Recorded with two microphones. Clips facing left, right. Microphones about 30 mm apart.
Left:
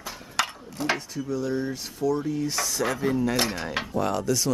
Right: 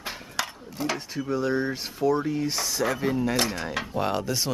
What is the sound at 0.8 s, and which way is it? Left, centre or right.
Speech, centre.